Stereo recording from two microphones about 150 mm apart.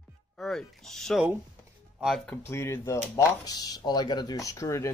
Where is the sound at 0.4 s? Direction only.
5° left (ahead or behind).